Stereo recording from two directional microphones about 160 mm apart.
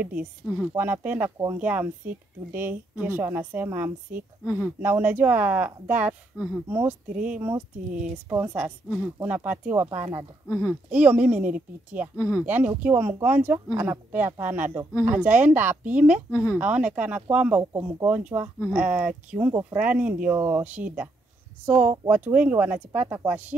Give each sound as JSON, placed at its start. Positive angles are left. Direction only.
{"t": 0.0, "sound": "speech", "side_deg": -10}
{"t": 10.5, "sound": "speech", "side_deg": 15}
{"t": 10.9, "sound": "speech", "side_deg": -10}
{"t": 16.3, "sound": "speech", "side_deg": 20}
{"t": 16.5, "sound": "speech", "side_deg": -10}